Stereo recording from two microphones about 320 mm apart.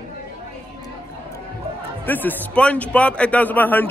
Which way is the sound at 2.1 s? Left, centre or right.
Centre.